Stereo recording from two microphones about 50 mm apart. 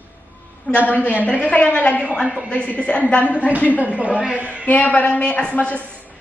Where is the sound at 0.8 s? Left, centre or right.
Left.